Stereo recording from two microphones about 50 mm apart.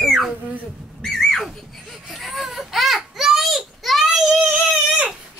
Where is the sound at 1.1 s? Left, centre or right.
Centre.